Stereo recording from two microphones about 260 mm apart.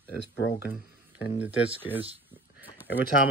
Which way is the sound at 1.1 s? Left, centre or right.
Centre.